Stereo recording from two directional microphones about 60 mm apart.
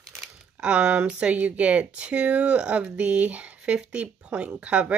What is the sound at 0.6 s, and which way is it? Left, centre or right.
Speech, centre.